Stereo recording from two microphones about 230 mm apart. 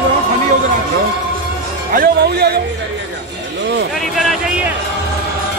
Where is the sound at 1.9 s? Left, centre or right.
Right.